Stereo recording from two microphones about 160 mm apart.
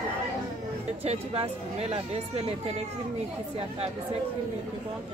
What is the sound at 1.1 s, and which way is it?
Speech, 40° right (ahead or behind).